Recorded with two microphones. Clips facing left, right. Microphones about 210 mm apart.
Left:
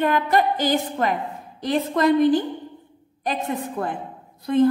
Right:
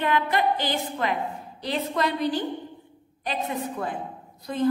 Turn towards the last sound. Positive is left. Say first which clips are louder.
# left 8 dB
turn(degrees=55)  # may be behind; listen again after turning